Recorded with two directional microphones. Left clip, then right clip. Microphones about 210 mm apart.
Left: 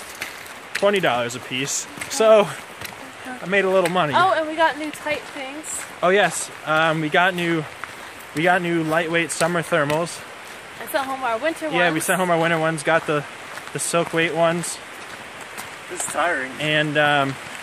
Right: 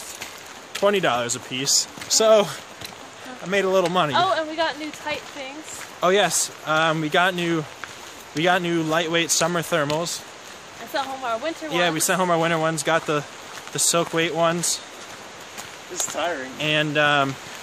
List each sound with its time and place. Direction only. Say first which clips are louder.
0.8 s speech: left 1 dB; 5° right (ahead or behind)
4.1 s speech: left 3 dB; 45° left (ahead or behind)
5.9 s speech: left 1 dB; 5° right (ahead or behind)
10.9 s speech: left 3 dB; 50° left (ahead or behind)
11.7 s speech: left 1 dB; 5° right (ahead or behind)
16.2 s speech: left 5 dB; 20° right (ahead or behind)
16.5 s speech: right 1 dB; 5° right (ahead or behind)